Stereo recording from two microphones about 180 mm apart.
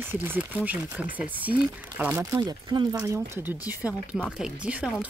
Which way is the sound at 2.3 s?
25° right (ahead or behind).